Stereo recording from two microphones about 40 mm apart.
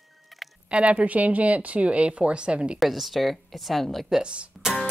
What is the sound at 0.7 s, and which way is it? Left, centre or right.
Speech, right.